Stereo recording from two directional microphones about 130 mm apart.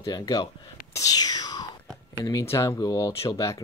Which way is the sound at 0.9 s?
30° left (ahead or behind).